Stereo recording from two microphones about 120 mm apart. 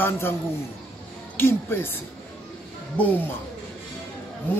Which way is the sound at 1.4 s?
20° left (ahead or behind).